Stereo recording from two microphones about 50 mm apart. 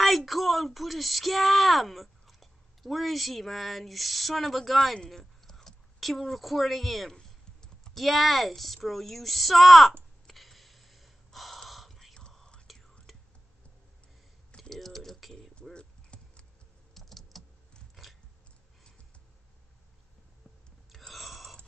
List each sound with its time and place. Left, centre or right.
0.0 s speech: centre
7.2 s typing: centre
7.9 s speech: centre
10.2 s gasp: centre
12.1 s whispering: centre
12.7 s whispering: centre
14.6 s typing: centre
15.7 s clip-clop: left
16.9 s typing: centre
21.1 s burping: centre